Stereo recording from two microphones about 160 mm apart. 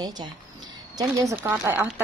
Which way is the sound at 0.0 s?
25° right (ahead or behind).